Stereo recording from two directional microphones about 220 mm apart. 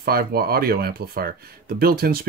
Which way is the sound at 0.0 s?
45° right (ahead or behind).